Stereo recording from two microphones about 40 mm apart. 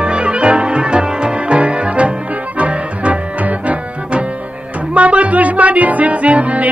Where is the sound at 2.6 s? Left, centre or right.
Right.